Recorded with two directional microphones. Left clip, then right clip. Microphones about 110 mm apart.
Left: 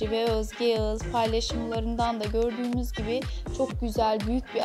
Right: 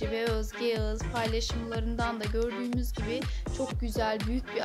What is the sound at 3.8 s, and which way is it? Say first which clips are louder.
Speech: left 5 dB; 25° left (ahead or behind).